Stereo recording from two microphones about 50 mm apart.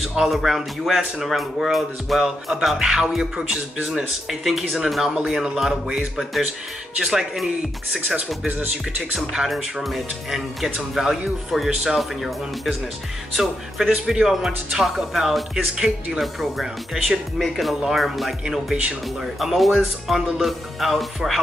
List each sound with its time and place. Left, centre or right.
0.0 s speech: centre
4.3 s speech: centre
8.5 s speech: right
9.1 s speech: centre
13.8 s speech: centre